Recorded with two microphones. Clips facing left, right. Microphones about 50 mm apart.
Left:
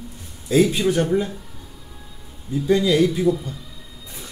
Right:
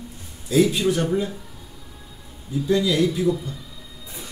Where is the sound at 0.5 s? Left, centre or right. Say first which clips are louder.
Left 1 dB; left.